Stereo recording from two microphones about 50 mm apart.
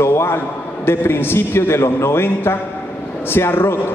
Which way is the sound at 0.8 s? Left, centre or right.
Left.